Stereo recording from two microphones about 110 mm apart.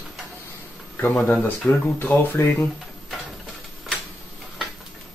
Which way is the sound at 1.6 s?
10° left (ahead or behind).